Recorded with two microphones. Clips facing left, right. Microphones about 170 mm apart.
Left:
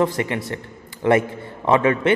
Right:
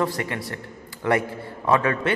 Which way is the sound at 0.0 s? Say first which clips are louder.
Left 5 dB; 20° left (ahead or behind).